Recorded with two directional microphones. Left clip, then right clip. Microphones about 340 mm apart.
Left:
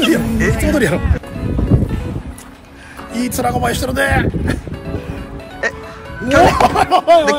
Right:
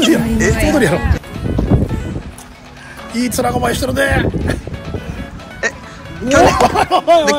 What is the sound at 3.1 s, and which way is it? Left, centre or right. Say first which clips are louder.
Speech: right 1 dB; centre.